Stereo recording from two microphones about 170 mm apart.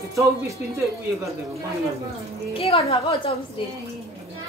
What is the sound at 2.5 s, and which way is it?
Speech, 35° left (ahead or behind).